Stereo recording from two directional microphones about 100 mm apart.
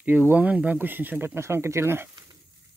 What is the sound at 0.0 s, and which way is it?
Speech, 15° right (ahead or behind).